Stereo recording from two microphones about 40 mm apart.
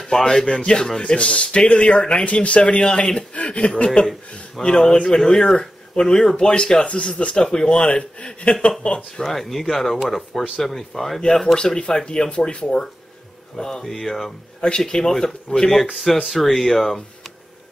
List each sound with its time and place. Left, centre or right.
0.0 s speech: centre
0.6 s speech: left
1.1 s speech: left
2.6 s speech: left
4.6 s speech: centre
4.9 s speech: left
9.2 s speech: centre
12.4 s speech: left
13.6 s speech: centre